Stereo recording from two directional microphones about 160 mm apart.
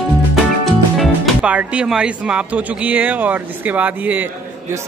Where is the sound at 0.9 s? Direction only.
Centre (ahead or behind).